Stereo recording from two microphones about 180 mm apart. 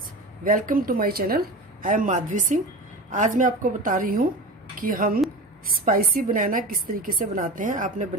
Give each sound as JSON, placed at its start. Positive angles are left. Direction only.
{"t": 0.4, "sound": "a woman's voice", "side_deg": -50}